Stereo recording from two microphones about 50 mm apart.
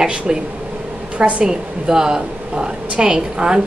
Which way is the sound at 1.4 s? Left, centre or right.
Centre.